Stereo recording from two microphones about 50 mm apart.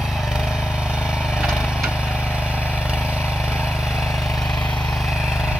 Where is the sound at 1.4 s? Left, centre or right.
Centre.